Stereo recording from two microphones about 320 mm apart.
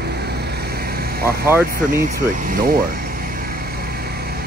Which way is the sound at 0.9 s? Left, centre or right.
Right.